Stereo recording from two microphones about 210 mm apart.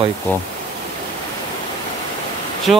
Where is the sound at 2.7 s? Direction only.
Centre (ahead or behind).